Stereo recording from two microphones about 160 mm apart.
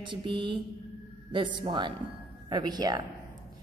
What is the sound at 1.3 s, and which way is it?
A woman's voice, 30° right (ahead or behind).